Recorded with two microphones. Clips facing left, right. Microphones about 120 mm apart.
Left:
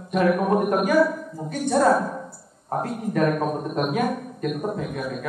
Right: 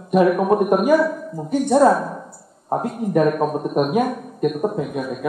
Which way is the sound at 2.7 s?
15° right (ahead or behind).